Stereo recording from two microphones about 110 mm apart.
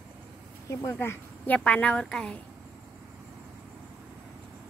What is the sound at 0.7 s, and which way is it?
A woman's voice, 25° left (ahead or behind).